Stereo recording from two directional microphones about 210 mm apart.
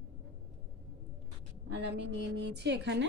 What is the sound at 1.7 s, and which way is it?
Speech, 55° right (ahead or behind).